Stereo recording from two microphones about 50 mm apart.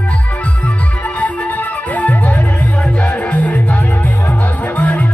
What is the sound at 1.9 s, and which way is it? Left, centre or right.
Music, left.